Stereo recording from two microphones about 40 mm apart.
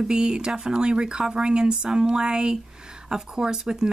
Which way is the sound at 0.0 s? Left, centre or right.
Centre.